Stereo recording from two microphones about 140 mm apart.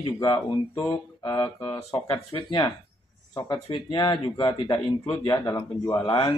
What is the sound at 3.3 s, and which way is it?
Speech, 30° left (ahead or behind).